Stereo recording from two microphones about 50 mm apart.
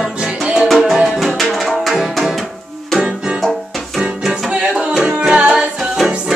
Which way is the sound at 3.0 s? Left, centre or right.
Right.